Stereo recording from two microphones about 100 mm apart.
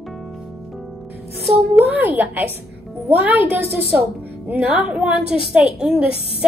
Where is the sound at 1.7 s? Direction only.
20° right (ahead or behind).